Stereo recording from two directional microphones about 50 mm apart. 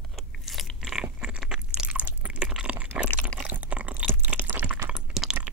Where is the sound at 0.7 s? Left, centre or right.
Centre.